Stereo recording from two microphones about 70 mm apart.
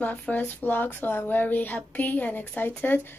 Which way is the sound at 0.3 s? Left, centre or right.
Left.